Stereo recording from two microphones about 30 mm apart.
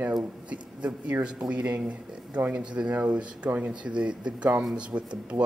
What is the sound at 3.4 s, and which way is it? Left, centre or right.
Speech, right.